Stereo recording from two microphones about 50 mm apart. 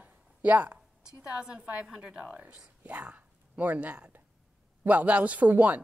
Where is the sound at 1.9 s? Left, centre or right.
Centre.